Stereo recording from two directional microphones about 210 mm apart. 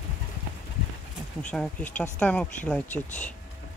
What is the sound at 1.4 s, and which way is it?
Speech, 5° left (ahead or behind).